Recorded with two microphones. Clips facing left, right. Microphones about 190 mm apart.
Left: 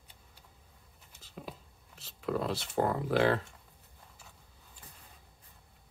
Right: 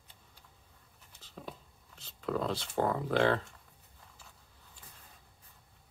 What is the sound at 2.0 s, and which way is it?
Speech, 5° left (ahead or behind).